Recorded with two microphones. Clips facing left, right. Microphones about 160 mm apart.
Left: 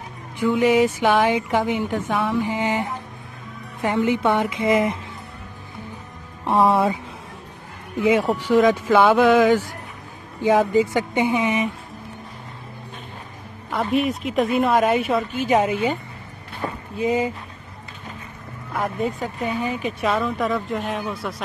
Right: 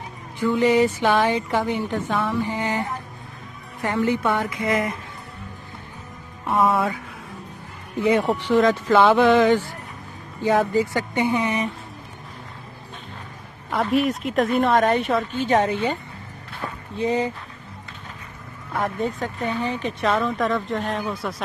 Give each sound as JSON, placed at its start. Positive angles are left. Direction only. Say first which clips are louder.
{"t": 0.4, "sound": "a woman's voice", "louder": "left 1 dB", "side_deg": 15}
{"t": 6.4, "sound": "a woman's voice", "louder": "left 3 dB", "side_deg": 30}
{"t": 8.0, "sound": "speech", "louder": "left 1 dB", "side_deg": 5}
{"t": 10.4, "sound": "a woman's voice", "louder": "left 2 dB", "side_deg": 20}
{"t": 13.7, "sound": "speech", "louder": "even", "side_deg": 0}
{"t": 16.5, "sound": "a sound", "louder": "left 2 dB", "side_deg": 10}
{"t": 18.7, "sound": "speech", "louder": "even", "side_deg": 5}